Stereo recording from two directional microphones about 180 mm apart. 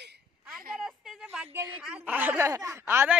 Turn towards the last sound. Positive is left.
turn(degrees=-15)  # may be behind; listen again after turning